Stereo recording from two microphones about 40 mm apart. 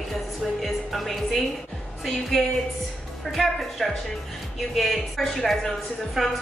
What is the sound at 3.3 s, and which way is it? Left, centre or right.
A woman's voice, centre.